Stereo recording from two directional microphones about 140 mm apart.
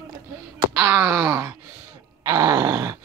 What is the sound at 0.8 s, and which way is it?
Wail, 15° right (ahead or behind).